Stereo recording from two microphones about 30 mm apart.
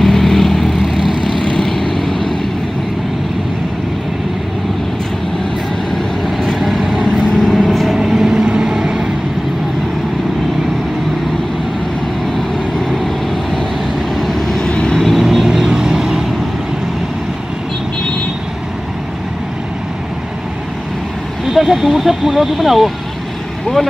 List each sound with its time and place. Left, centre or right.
0.0 s vehicle: centre
0.9 s vehicle: centre
1.6 s vehicle: centre
6.2 s vehicle: centre
7.9 s vehicle: centre
14.1 s vehicle: centre
14.6 s vehicle: left
15.0 s vehicle: centre
15.4 s vehicle: centre
21.5 s vehicle: centre